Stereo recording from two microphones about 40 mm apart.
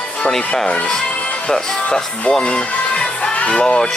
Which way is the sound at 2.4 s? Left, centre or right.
Left.